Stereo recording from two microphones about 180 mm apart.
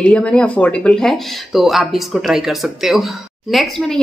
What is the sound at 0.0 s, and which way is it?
A woman's voice, 5° left (ahead or behind).